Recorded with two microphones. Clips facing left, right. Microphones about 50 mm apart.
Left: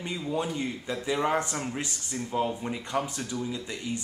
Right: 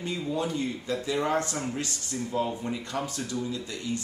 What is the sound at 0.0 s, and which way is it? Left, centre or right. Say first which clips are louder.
Speech: right 1 dB; centre.